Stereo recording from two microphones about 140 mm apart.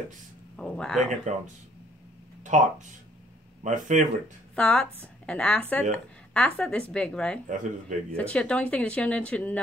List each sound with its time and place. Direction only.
0.6 s speech: 5° left (ahead or behind)
1.3 s speech: 60° right (ahead or behind)
2.4 s speech: 60° right (ahead or behind)
4.6 s speech: 10° left (ahead or behind)